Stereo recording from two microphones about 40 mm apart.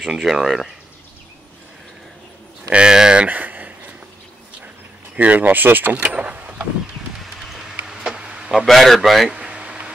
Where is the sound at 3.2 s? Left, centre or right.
Right.